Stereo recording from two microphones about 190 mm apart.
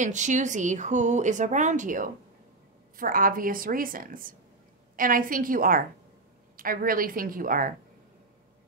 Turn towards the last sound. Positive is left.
turn(degrees=-45)  # may be behind; listen again after turning